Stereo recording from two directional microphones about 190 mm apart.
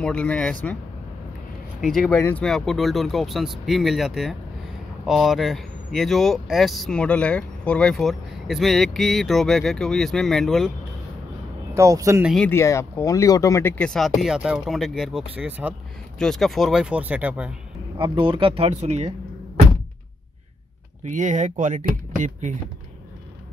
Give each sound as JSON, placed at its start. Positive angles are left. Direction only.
{"t": 0.0, "sound": "speech", "side_deg": 5}
{"t": 1.8, "sound": "speech", "side_deg": 5}
{"t": 11.7, "sound": "speech", "side_deg": -15}
{"t": 12.3, "sound": "speech", "side_deg": 5}
{"t": 12.5, "sound": "speech", "side_deg": 15}
{"t": 16.2, "sound": "speech", "side_deg": 0}
{"t": 17.9, "sound": "speech", "side_deg": -25}
{"t": 21.0, "sound": "speech", "side_deg": -40}